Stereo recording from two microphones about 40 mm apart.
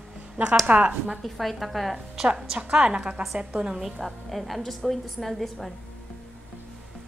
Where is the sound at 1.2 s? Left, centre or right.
Centre.